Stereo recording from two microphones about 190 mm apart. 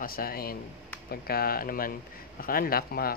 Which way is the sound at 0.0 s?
50° left (ahead or behind).